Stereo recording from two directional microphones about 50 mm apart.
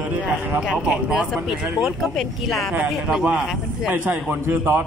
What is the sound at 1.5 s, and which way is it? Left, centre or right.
Speech, centre.